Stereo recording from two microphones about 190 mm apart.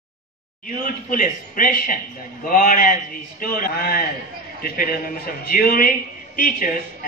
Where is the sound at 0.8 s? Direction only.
45° left (ahead or behind).